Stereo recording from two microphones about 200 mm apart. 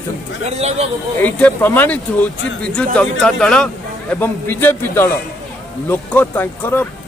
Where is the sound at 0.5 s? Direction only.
30° right (ahead or behind).